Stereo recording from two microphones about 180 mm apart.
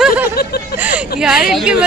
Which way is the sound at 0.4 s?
60° left (ahead or behind).